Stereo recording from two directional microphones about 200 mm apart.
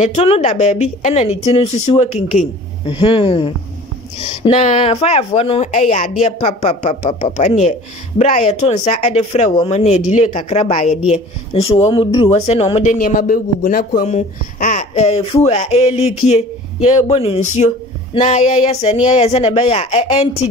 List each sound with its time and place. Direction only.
0.0 s a woman's voice: 30° left (ahead or behind)